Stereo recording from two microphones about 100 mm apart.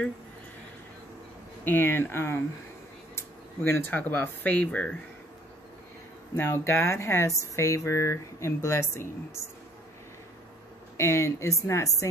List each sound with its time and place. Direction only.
1.6 s speech: 20° left (ahead or behind)
6.3 s speech: 25° left (ahead or behind)
11.0 s speech: 25° left (ahead or behind)